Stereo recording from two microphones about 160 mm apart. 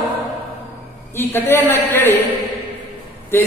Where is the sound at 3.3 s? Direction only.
15° left (ahead or behind).